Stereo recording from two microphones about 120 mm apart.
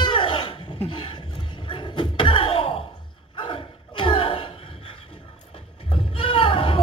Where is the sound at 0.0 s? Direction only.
45° left (ahead or behind).